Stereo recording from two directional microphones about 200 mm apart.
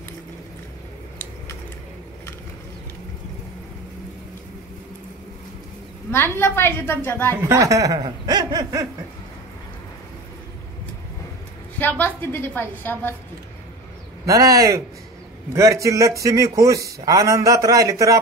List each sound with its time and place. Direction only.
1.1 s a sound: 10° left (ahead or behind)
6.1 s a woman's voice: 10° left (ahead or behind)
7.4 s a man's voice: 15° right (ahead or behind)
11.8 s a woman's voice: 10° left (ahead or behind)
14.2 s a man's voice: 15° right (ahead or behind)